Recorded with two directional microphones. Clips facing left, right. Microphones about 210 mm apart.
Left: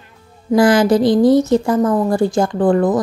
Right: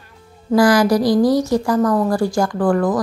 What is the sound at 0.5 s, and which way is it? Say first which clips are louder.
A woman's voice: left 2 dB; 25° left (ahead or behind).